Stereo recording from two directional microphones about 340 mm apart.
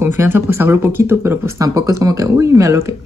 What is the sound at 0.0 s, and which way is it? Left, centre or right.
Speech, centre.